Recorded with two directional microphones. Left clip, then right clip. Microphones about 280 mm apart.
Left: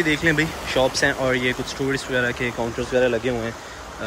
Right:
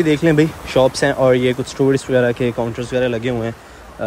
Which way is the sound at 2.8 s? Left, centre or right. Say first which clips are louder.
Even; right.